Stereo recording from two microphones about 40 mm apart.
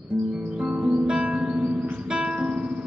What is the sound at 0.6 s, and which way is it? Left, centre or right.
Music, right.